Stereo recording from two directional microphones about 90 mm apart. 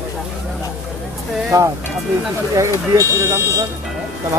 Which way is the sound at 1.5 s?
45° right (ahead or behind).